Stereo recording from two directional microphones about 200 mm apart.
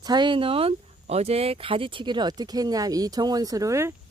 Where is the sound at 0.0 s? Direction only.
20° right (ahead or behind).